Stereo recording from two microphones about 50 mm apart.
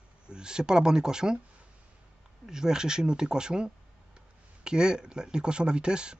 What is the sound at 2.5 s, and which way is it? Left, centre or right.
A man's voice, centre.